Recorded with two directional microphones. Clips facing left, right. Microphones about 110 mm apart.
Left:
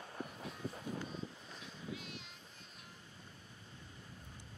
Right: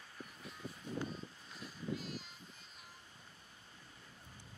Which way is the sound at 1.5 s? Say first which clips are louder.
Right 4 dB; centre (ahead or behind).